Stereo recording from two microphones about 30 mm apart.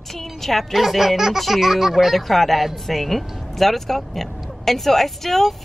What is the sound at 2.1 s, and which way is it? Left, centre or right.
Speech, centre.